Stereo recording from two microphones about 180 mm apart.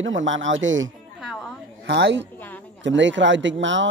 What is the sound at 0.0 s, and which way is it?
Speech, 90° right.